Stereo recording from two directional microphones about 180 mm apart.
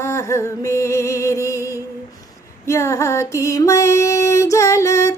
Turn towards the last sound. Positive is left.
turn(degrees=15)  # may be behind; listen again after turning